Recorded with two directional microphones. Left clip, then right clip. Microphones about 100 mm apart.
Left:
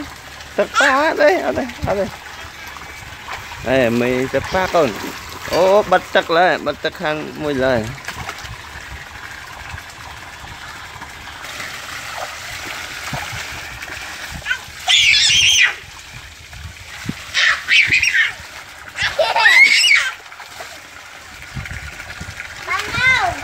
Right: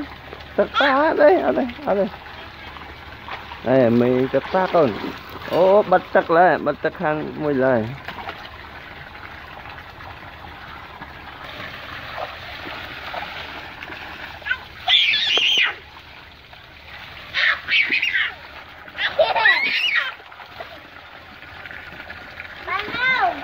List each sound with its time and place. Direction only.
0.7 s speech: 10° left (ahead or behind)
1.0 s speech: 5° right (ahead or behind)
3.7 s speech: centre (ahead or behind)
4.1 s speech: 40° left (ahead or behind)
4.5 s speech: 25° left (ahead or behind)
4.9 s speech: 45° left (ahead or behind)
12.1 s stream: 20° left (ahead or behind)
14.5 s a sound: 10° left (ahead or behind)
17.3 s bird: 10° left (ahead or behind)
19.1 s a sound: 25° left (ahead or behind)
19.5 s belly laugh: 5° left (ahead or behind)
22.7 s splash: 25° left (ahead or behind)